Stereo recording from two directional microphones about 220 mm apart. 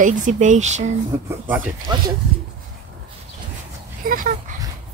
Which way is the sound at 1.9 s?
20° right (ahead or behind).